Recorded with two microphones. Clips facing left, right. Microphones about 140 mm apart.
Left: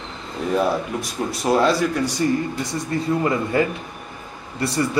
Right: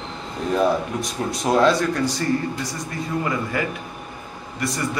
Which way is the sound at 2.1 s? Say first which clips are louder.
Left 2 dB; 15° left (ahead or behind).